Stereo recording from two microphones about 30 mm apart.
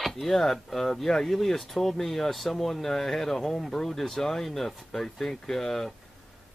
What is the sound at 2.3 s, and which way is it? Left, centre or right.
Speech, centre.